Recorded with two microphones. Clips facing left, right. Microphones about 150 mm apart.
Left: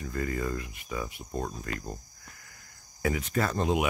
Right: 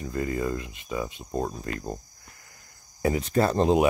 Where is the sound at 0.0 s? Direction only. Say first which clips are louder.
Right 4 dB; 25° right (ahead or behind).